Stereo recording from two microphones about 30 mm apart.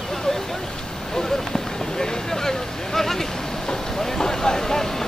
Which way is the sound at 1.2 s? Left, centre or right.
Centre.